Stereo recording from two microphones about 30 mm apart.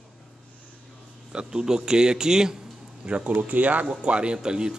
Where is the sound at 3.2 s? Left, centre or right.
Right.